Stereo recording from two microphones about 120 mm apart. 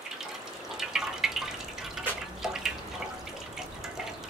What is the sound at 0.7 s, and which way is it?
Drip, 5° right (ahead or behind).